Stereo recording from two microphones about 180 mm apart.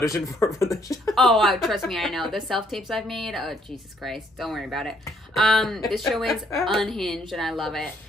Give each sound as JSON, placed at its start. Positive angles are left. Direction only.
{"t": 0.0, "sound": "speech", "side_deg": 15}
{"t": 1.1, "sound": "a woman's voice", "side_deg": 0}